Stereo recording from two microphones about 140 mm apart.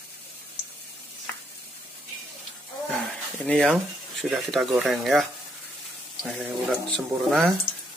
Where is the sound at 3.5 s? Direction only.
5° left (ahead or behind).